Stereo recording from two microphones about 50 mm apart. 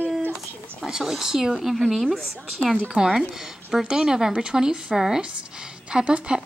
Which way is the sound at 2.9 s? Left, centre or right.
Centre.